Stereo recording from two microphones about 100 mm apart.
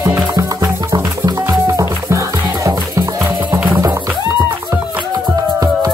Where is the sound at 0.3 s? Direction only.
35° right (ahead or behind).